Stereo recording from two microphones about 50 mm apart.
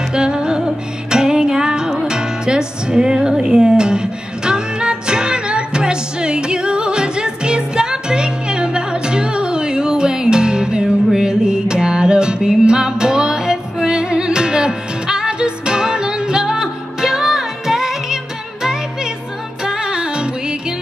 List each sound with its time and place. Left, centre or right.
0.1 s music: centre